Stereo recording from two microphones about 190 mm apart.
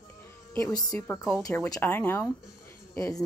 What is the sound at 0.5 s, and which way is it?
Speech, 20° left (ahead or behind).